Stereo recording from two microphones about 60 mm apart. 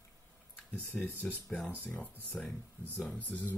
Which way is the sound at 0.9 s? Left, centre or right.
Centre.